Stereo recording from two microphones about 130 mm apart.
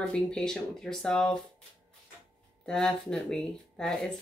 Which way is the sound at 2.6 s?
5° left (ahead or behind).